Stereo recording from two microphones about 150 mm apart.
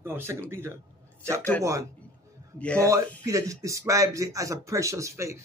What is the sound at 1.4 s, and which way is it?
Speech, 10° left (ahead or behind).